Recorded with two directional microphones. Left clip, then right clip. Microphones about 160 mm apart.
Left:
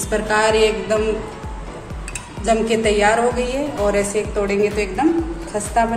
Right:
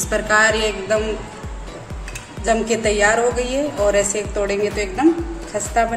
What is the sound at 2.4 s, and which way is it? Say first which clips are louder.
A woman's voice: left 1 dB; 40° right (ahead or behind).